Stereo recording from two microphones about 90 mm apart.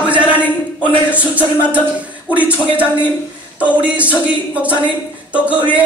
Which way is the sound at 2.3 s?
15° right (ahead or behind).